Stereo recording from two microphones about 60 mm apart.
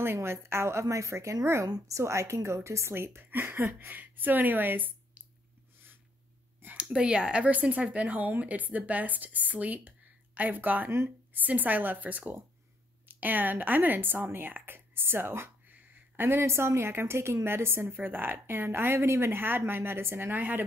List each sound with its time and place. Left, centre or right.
0.0 s a woman's voice: right
6.8 s speech: centre